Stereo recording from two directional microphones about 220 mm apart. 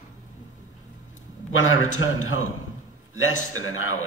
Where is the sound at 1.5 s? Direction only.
65° left (ahead or behind).